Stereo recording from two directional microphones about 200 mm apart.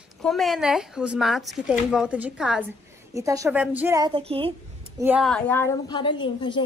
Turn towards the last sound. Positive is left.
turn(degrees=25)  # may be behind; listen again after turning